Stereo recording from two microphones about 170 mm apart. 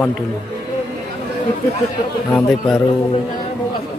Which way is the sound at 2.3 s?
5° left (ahead or behind).